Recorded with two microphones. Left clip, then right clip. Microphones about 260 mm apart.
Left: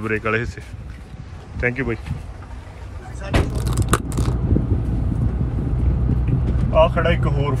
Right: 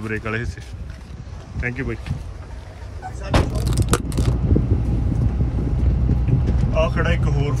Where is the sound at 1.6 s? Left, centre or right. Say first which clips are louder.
Left 5 dB; centre.